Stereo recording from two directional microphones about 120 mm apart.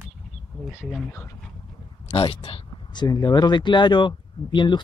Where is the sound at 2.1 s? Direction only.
55° left (ahead or behind).